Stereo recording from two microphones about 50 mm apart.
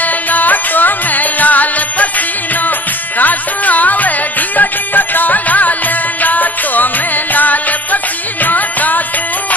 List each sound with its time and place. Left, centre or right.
0.0 s music: left